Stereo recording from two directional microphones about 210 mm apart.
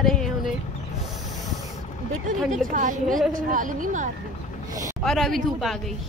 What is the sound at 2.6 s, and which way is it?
A woman's voice, 40° right (ahead or behind).